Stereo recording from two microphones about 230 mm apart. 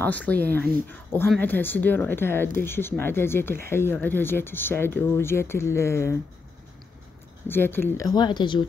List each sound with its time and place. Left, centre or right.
0.0 s speech: centre
7.4 s speech: centre